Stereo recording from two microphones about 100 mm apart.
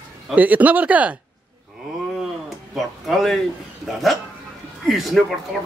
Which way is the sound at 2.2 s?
Centre (ahead or behind).